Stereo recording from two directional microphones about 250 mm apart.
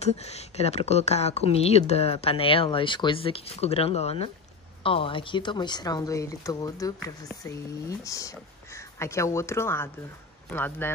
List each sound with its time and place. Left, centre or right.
0.2 s speech: left; by 10.9 s centre